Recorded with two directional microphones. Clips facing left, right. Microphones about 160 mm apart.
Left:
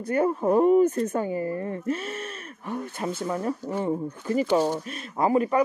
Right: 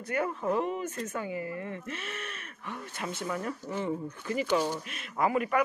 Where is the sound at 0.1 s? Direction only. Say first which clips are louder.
Left 8 dB; 40° left (ahead or behind).